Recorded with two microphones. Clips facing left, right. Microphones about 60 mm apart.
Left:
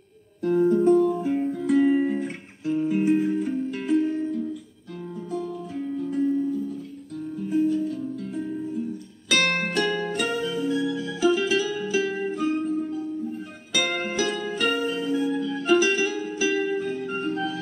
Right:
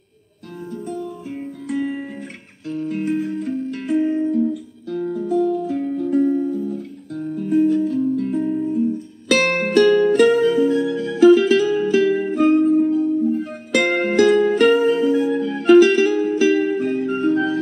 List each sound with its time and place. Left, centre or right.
1.3 s music: centre
4.0 s music: right
5.3 s music: right
9.8 s music: right